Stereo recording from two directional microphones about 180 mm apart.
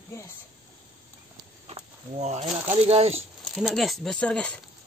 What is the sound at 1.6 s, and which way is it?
Speech, 35° right (ahead or behind).